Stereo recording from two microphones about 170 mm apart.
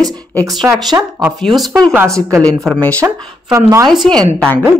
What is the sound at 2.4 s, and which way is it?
Speech, 5° left (ahead or behind).